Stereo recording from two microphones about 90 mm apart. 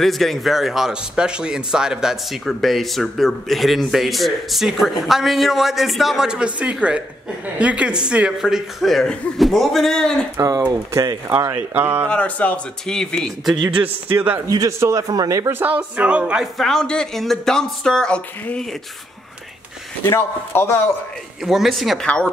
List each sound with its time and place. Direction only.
0.0 s a man's voice: centre (ahead or behind)
10.7 s speech: 45° right (ahead or behind)
11.2 s speech: 30° right (ahead or behind)
12.1 s speech: 15° left (ahead or behind)
14.1 s speech: 20° right (ahead or behind)
15.0 s speech: 40° right (ahead or behind)
15.6 s speech: 15° right (ahead or behind)
16.5 s speech: 5° left (ahead or behind)
20.1 s speech: 25° left (ahead or behind)
21.5 s a man's voice: centre (ahead or behind)
22.0 s speech: 10° left (ahead or behind)